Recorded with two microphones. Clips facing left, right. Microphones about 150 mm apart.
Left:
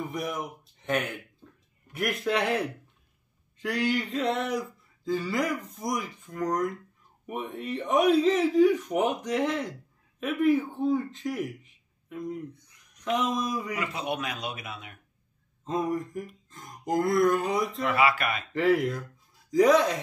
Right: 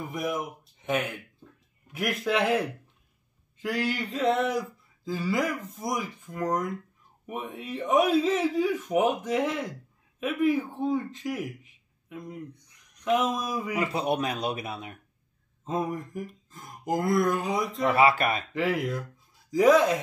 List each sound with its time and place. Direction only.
0.1 s a man's voice: centre (ahead or behind)
13.7 s speech: 30° right (ahead or behind)
15.6 s speech: 5° right (ahead or behind)
17.9 s speech: 30° right (ahead or behind)
18.5 s speech: centre (ahead or behind)